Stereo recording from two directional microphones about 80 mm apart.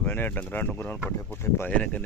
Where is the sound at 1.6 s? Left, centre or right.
Centre.